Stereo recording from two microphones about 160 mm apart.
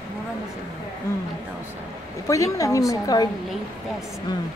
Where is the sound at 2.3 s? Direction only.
20° left (ahead or behind).